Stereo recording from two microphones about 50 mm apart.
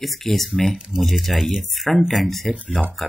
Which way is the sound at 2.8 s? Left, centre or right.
Centre.